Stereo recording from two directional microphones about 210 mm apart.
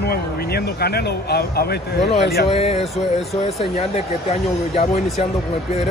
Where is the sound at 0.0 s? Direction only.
50° left (ahead or behind).